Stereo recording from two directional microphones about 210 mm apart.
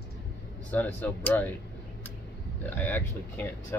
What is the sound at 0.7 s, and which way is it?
Speech, 5° left (ahead or behind).